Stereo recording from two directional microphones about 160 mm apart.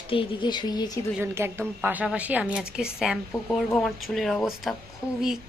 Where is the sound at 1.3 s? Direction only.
15° right (ahead or behind).